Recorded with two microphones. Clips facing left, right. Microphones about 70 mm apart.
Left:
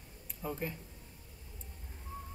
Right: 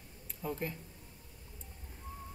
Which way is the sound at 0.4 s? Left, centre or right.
Centre.